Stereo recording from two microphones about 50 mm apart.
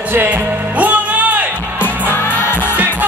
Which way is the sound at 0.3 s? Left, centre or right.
Right.